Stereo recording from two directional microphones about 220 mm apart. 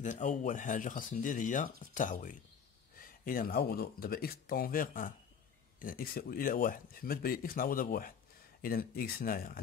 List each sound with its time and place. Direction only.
0.0 s speech: 35° left (ahead or behind)